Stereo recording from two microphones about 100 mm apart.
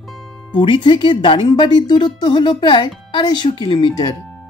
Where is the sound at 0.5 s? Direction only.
55° left (ahead or behind).